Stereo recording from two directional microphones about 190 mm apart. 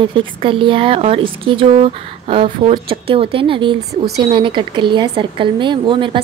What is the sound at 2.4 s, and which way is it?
Speech, 45° right (ahead or behind).